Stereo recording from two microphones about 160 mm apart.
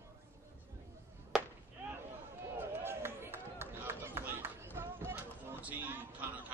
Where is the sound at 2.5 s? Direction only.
15° right (ahead or behind).